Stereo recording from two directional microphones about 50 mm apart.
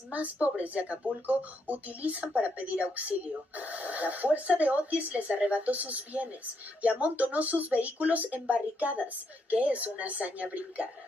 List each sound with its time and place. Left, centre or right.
0.1 s speech: right